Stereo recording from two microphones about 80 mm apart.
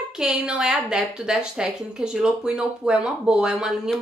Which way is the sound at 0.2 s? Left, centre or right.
Centre.